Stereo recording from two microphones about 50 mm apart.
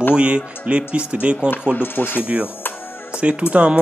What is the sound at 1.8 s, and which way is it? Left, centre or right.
Speech, left.